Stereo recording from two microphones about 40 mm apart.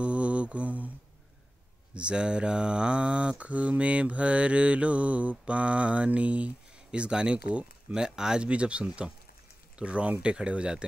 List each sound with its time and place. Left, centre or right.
0.0 s mantra: right
2.0 s mantra: right
5.4 s speech: right
8.5 s mantra: right